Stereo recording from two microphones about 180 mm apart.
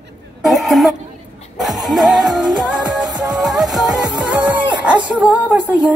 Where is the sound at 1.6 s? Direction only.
Centre (ahead or behind).